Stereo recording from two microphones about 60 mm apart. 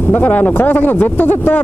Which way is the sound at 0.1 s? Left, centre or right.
Left.